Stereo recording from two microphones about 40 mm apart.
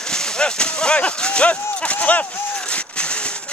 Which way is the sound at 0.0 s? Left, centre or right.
Centre.